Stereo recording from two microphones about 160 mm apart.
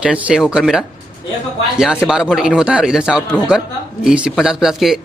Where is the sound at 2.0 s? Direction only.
5° right (ahead or behind).